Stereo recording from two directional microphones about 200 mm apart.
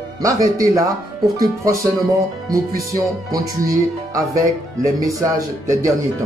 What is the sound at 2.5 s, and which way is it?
Speech, 15° right (ahead or behind).